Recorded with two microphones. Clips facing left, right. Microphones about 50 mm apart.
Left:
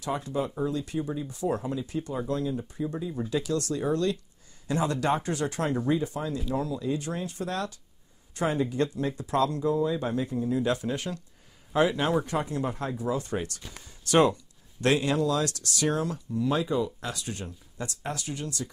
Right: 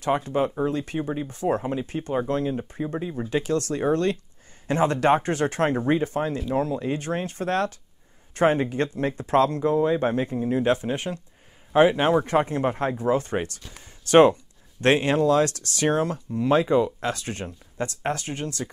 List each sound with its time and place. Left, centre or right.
0.0 s speech: right